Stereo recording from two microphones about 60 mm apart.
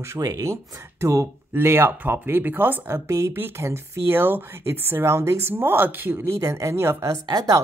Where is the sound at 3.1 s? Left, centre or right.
Right.